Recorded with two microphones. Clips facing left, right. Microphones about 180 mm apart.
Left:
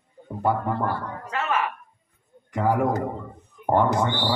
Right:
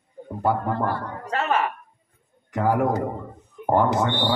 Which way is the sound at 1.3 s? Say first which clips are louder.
Right 3 dB; 35° right (ahead or behind).